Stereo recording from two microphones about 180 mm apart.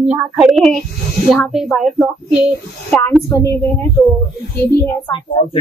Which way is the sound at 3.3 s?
15° left (ahead or behind).